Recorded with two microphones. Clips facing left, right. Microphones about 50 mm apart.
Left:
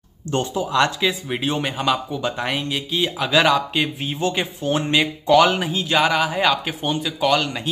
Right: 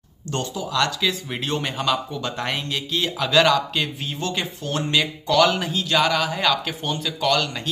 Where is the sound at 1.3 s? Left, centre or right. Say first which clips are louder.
Left 3 dB; centre.